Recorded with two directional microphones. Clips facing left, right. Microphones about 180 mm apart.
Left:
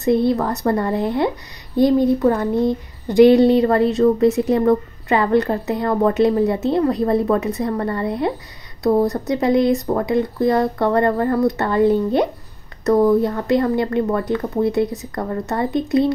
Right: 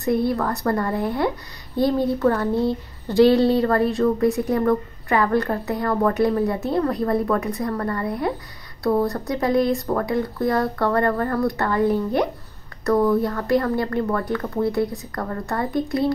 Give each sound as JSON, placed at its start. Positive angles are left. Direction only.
{"t": 0.0, "sound": "speech", "side_deg": 25}